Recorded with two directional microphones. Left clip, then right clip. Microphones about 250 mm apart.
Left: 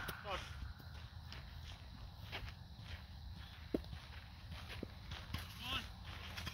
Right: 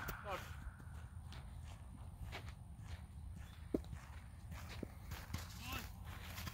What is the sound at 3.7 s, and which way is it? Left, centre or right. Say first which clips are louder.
Walk: even; centre.